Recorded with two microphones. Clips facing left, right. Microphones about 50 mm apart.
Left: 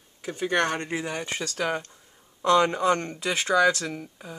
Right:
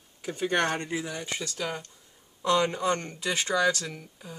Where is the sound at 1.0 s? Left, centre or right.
Left.